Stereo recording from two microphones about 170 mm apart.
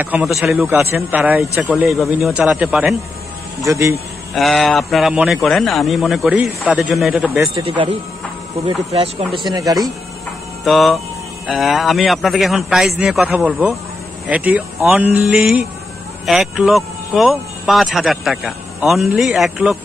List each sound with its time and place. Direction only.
0.0 s speech: 5° right (ahead or behind)
3.6 s speech: 15° right (ahead or behind)
4.3 s speech: centre (ahead or behind)
7.5 s speech: 30° right (ahead or behind)
10.6 s hum: centre (ahead or behind)
11.4 s speech: centre (ahead or behind)